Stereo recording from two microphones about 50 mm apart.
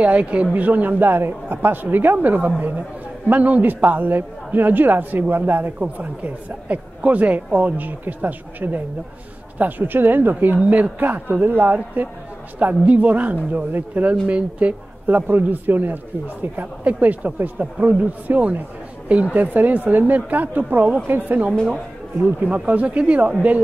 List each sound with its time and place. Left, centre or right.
0.0 s a woman's voice: right
10.6 s a woman's voice: right
14.2 s a woman's voice: right
22.4 s speech: right